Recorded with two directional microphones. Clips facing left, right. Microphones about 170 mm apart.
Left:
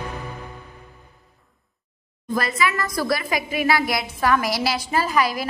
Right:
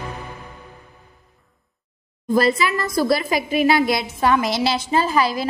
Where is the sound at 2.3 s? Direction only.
30° right (ahead or behind).